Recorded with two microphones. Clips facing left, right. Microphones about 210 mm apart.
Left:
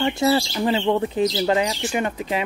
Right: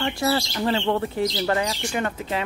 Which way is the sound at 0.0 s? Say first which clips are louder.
Left 4 dB; 20° left (ahead or behind).